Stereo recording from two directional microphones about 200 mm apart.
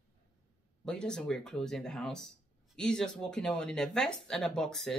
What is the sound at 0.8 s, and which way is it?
Speech, 5° left (ahead or behind).